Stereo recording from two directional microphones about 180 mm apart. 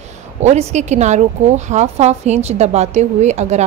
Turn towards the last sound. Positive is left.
turn(degrees=-40)  # may be behind; listen again after turning